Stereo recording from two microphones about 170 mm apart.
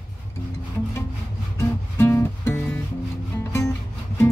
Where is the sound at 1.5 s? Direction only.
15° left (ahead or behind).